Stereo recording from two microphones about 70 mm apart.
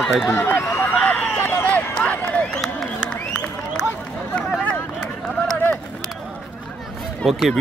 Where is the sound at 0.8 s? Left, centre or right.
Left.